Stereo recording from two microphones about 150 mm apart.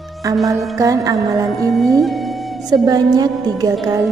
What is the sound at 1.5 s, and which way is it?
Speech, centre (ahead or behind).